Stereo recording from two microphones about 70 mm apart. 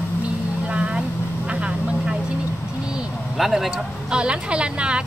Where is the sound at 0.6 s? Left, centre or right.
Centre.